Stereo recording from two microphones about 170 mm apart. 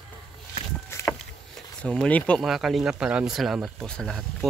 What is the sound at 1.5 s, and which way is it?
Speech, 5° left (ahead or behind).